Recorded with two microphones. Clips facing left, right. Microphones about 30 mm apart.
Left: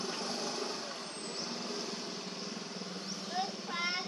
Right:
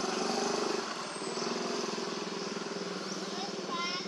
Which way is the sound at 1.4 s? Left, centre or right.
Right.